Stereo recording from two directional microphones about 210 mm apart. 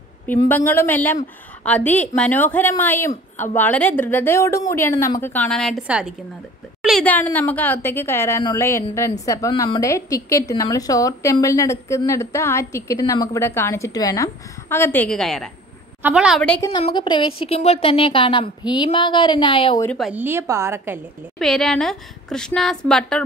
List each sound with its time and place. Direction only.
0.3 s a woman's voice: 10° left (ahead or behind)
16.7 s speech: 25° left (ahead or behind)
19.8 s a woman's voice: 5° left (ahead or behind)
20.1 s a woman's voice: 10° right (ahead or behind)
21.4 s a woman's voice: centre (ahead or behind)